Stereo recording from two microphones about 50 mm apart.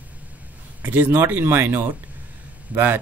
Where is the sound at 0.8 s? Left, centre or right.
Right.